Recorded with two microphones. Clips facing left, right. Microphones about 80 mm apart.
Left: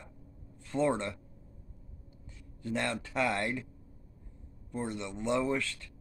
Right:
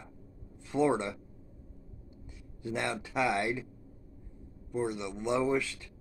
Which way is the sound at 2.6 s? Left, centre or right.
Centre.